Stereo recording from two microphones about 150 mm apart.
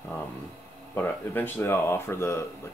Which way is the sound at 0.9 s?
15° left (ahead or behind).